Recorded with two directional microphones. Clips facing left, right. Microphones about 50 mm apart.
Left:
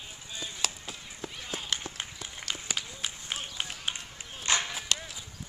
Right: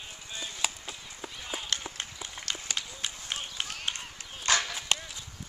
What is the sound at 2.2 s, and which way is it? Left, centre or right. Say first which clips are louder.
Run: even; centre.